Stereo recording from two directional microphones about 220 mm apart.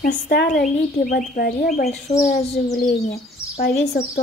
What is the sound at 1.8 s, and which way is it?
Speech, 30° left (ahead or behind).